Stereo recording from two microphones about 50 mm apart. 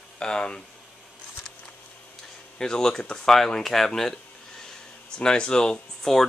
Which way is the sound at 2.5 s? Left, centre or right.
Centre.